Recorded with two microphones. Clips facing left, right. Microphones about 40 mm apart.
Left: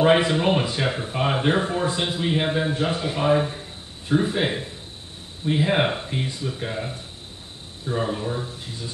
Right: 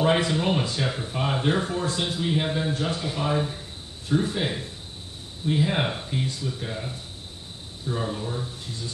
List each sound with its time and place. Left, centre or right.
0.0 s speech: left